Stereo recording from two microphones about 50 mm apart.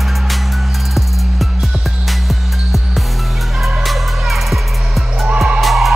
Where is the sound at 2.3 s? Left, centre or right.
Centre.